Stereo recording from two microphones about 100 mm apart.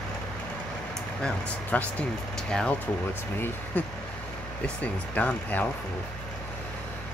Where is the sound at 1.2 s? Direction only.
15° left (ahead or behind).